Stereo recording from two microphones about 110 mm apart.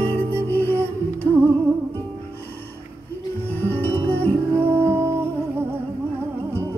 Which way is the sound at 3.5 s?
15° left (ahead or behind).